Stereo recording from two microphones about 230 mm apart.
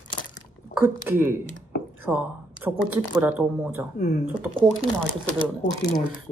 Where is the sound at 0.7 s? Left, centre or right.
Centre.